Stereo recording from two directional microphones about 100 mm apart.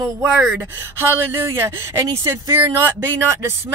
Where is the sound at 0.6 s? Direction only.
25° right (ahead or behind).